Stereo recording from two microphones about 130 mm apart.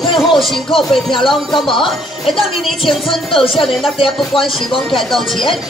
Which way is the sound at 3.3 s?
45° left (ahead or behind).